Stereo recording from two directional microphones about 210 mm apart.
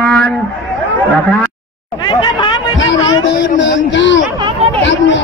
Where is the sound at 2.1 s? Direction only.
20° left (ahead or behind).